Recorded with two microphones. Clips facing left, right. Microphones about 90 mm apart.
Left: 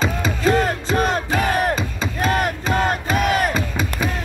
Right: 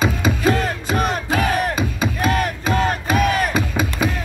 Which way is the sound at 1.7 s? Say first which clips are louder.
Right 2 dB; 15° right (ahead or behind).